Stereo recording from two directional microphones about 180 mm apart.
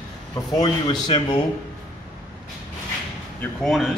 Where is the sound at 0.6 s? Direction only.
25° left (ahead or behind).